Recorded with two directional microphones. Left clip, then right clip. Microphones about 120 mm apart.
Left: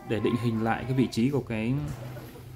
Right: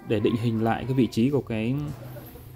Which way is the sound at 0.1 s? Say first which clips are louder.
Right 3 dB; 25° right (ahead or behind).